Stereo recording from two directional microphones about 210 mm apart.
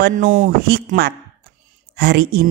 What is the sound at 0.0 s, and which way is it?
A woman's voice, 40° right (ahead or behind).